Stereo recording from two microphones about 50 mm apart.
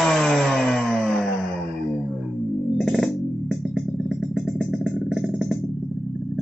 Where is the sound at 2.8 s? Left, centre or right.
Centre.